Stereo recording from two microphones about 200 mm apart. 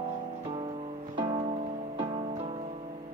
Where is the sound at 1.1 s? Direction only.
25° right (ahead or behind).